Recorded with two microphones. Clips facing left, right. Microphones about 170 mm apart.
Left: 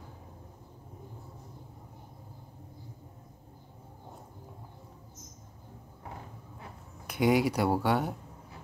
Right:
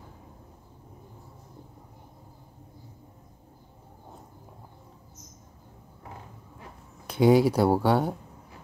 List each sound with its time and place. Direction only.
7.1 s speech: 30° right (ahead or behind)